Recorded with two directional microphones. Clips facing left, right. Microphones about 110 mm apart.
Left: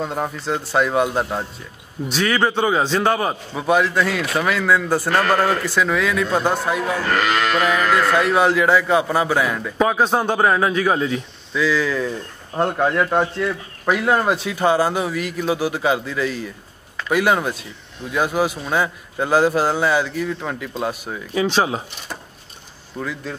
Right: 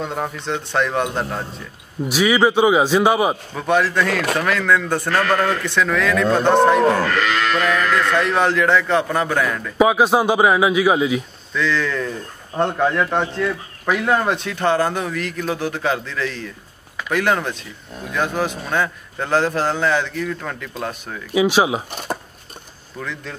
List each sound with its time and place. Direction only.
0.0 s a man's voice: 5° left (ahead or behind)
2.0 s a man's voice: 10° right (ahead or behind)
3.5 s a man's voice: 5° left (ahead or behind)
6.8 s speech: 45° right (ahead or behind)
7.5 s a man's voice: 10° left (ahead or behind)
9.8 s a man's voice: 10° right (ahead or behind)
11.5 s a man's voice: 5° left (ahead or behind)
21.3 s a man's voice: 10° right (ahead or behind)
21.9 s speech: 50° right (ahead or behind)
22.9 s a man's voice: 5° left (ahead or behind)